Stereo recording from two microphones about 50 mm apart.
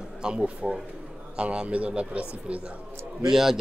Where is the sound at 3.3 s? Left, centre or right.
Centre.